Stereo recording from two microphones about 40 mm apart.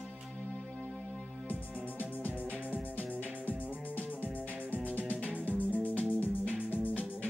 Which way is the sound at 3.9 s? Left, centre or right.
Left.